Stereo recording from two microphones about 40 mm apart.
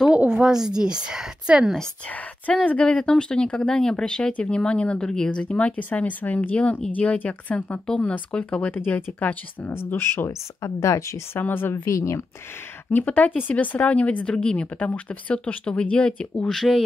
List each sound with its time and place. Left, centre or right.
0.3 s a woman's voice: centre
2.4 s speech: left
7.8 s speech: left
8.7 s speech: left
9.9 s speech: left
11.3 s speech: left
13.0 s speech: left
14.2 s speech: left
15.3 s speech: left
16.4 s speech: centre